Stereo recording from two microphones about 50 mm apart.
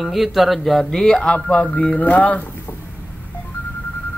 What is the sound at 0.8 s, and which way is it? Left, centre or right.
Speech, centre.